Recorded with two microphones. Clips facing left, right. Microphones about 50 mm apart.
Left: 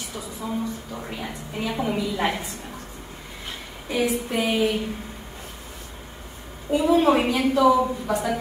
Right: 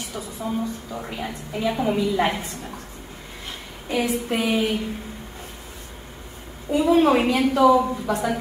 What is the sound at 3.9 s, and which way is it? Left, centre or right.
Speech, right.